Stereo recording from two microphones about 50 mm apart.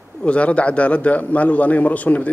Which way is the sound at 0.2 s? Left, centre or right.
Left.